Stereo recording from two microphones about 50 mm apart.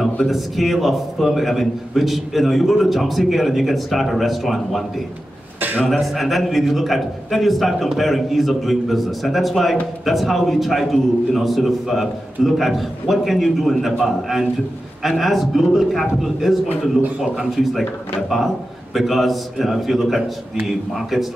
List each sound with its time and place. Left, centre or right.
0.3 s a man's voice: centre
5.6 s a sound: right
5.9 s a man's voice: centre
18.9 s a man's voice: centre